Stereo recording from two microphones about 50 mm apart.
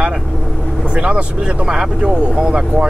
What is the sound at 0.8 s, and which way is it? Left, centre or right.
Speech, right.